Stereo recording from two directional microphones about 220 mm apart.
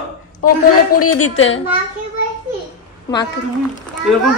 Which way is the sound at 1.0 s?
85° left.